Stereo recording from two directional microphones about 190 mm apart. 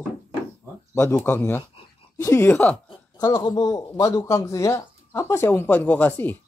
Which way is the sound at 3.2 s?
20° left (ahead or behind).